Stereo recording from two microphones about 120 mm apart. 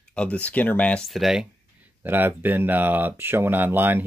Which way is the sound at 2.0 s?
15° right (ahead or behind).